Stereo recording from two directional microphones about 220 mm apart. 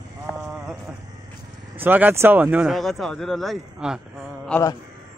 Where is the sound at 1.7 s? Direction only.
10° right (ahead or behind).